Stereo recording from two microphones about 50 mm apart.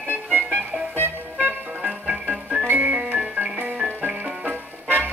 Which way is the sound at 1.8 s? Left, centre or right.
Centre.